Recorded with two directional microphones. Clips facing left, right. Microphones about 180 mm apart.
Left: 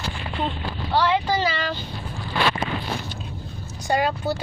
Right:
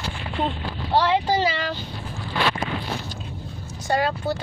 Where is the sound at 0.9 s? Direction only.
25° right (ahead or behind).